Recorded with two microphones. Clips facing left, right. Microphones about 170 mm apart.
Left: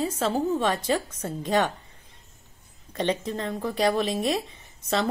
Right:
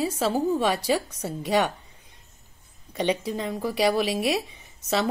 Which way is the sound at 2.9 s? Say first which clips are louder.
Right 1 dB; 10° right (ahead or behind).